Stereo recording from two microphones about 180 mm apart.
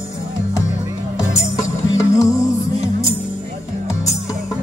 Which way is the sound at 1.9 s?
15° left (ahead or behind).